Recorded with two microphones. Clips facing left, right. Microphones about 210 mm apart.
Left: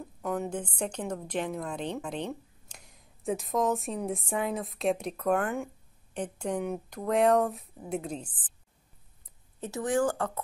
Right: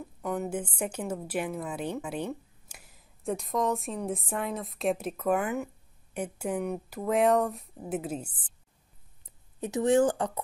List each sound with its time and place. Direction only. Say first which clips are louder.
0.2 s a woman's voice: even; 5° right (ahead or behind)
9.6 s speech: right 4 dB; 20° right (ahead or behind)